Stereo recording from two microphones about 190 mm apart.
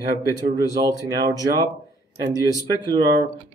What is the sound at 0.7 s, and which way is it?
Speech, 20° right (ahead or behind).